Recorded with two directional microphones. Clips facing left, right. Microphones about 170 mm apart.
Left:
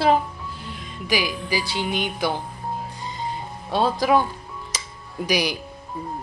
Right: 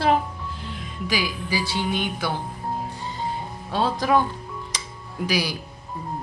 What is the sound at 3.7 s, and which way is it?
Speech, 10° left (ahead or behind).